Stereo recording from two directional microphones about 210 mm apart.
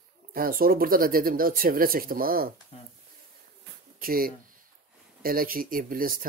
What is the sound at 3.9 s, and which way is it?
Speech, 45° right (ahead or behind).